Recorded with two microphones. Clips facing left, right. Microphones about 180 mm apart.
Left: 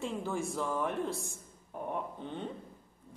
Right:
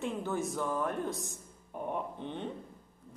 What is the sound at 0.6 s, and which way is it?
Speech, centre (ahead or behind).